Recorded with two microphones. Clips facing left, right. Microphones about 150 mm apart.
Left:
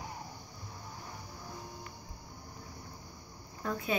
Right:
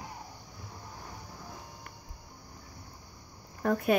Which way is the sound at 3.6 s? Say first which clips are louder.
Right 7 dB; 60° right (ahead or behind).